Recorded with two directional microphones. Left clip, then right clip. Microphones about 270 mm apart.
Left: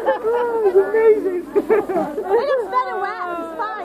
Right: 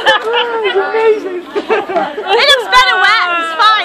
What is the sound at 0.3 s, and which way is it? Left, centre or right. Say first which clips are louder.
Chatter: right 4 dB; centre.